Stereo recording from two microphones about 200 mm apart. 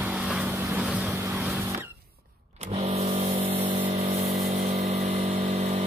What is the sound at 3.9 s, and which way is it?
Vehicle, 35° right (ahead or behind).